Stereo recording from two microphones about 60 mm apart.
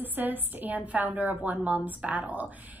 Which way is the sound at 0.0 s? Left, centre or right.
Right.